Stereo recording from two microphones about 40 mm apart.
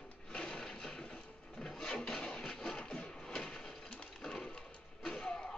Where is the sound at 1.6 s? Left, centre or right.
Centre.